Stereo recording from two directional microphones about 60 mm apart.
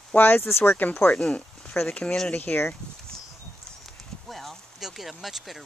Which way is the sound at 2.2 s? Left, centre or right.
Left.